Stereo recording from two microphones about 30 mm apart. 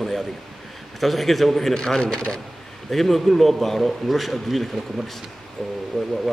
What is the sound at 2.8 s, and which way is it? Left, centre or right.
A man's voice, centre.